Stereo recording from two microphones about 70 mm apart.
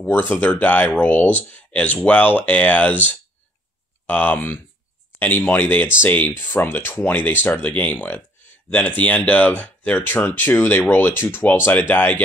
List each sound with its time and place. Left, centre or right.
0.0 s speech: left